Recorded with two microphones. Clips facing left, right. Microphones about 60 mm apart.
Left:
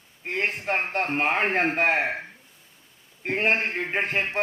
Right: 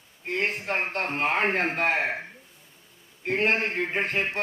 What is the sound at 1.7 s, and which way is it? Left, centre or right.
Speech, centre.